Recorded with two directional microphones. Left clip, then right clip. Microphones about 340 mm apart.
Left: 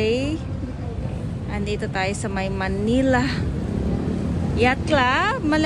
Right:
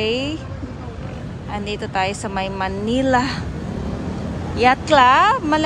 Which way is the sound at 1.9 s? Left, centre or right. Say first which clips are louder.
Right 6 dB; centre.